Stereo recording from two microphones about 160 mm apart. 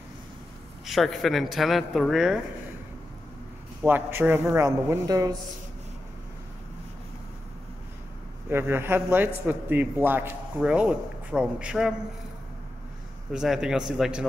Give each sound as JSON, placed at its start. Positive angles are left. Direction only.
{"t": 0.8, "sound": "speech", "side_deg": 0}
{"t": 3.8, "sound": "a man's voice", "side_deg": -10}
{"t": 8.5, "sound": "a man's voice", "side_deg": -15}
{"t": 13.3, "sound": "speech", "side_deg": -5}